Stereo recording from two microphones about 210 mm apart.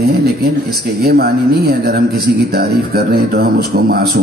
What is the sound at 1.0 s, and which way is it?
A man's voice, 50° right (ahead or behind).